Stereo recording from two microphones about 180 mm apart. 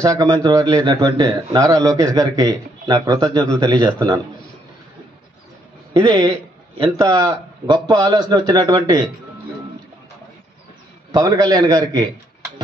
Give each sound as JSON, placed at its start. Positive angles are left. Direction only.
{"t": 0.0, "sound": "a man's voice", "side_deg": -20}
{"t": 5.9, "sound": "a man's voice", "side_deg": -25}
{"t": 11.1, "sound": "a man's voice", "side_deg": -20}